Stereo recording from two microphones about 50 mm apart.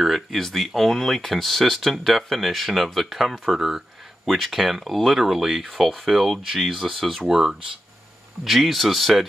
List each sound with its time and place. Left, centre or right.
0.0 s a sound: centre
0.4 s speech: centre
4.3 s speech: centre
7.2 s speech: centre
8.5 s speech: centre